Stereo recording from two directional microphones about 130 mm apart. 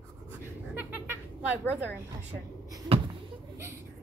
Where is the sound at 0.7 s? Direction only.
15° right (ahead or behind).